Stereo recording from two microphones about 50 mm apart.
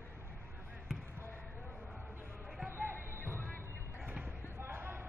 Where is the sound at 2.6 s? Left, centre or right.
Right.